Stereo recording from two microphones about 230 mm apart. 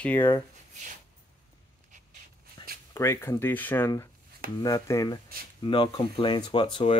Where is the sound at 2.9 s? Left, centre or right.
Centre.